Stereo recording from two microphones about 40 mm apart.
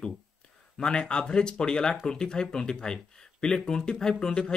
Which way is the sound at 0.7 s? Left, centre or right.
Left.